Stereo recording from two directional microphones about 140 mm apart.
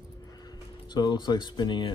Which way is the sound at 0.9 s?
30° left (ahead or behind).